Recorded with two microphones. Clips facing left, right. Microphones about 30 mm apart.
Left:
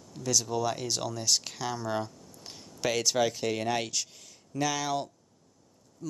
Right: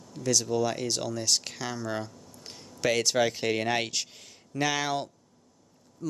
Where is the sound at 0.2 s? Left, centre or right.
Centre.